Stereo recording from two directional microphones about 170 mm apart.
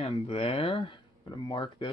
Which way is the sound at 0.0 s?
35° left (ahead or behind).